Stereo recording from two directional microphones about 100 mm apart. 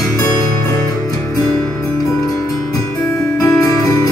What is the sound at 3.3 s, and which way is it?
Music, 35° left (ahead or behind).